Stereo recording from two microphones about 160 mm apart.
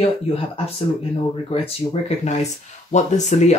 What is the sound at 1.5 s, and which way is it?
Speech, 40° left (ahead or behind).